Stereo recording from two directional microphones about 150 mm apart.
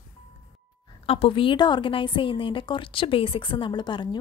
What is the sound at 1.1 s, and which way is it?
A woman's voice, 40° left (ahead or behind).